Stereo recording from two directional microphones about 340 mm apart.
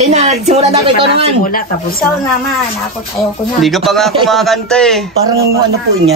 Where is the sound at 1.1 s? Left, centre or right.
Left.